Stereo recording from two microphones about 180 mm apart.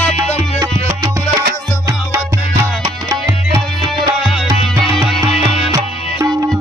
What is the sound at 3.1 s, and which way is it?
Music, 15° right (ahead or behind).